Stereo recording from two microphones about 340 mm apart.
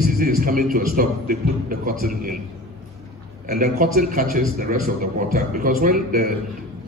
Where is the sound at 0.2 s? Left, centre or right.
Right.